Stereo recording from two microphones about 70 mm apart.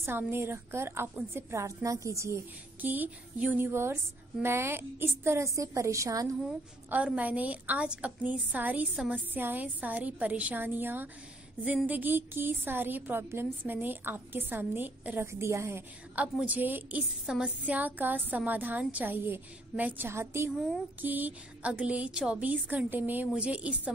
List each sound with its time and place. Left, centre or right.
0.3 s a woman's voice: right
2.8 s a woman's voice: right
3.5 s a woman's voice: right
6.9 s a woman's voice: right
16.2 s a woman's voice: right
17.3 s a woman's voice: centre
17.7 s a woman's voice: right
20.1 s a woman's voice: right
20.5 s speech: centre
21.0 s a woman's voice: right
23.2 s a woman's voice: centre